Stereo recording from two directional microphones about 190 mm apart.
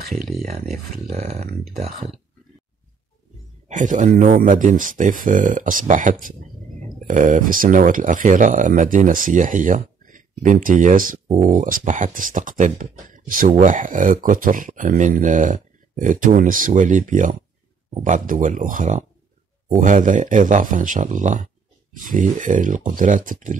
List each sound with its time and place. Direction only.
0.1 s speech: centre (ahead or behind)
0.5 s speech: 35° right (ahead or behind)
3.6 s speech: 40° right (ahead or behind)